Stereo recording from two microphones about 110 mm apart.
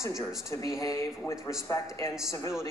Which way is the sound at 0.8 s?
25° left (ahead or behind).